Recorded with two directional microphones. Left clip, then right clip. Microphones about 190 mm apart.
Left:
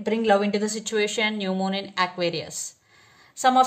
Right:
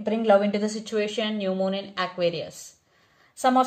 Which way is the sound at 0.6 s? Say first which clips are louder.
Left 2 dB; 45° left (ahead or behind).